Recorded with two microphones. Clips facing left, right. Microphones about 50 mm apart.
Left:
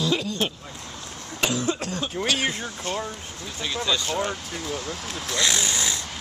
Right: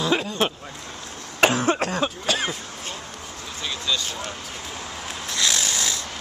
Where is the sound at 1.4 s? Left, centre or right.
Right.